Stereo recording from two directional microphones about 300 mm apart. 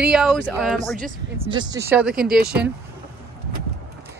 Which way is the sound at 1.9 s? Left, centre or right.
Centre.